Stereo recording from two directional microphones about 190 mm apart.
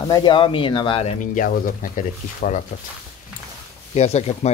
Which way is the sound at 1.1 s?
45° left (ahead or behind).